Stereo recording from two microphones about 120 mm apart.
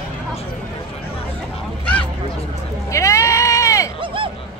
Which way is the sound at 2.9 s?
25° left (ahead or behind).